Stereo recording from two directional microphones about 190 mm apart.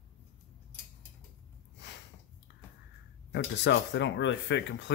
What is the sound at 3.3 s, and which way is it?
Speech, 65° left (ahead or behind).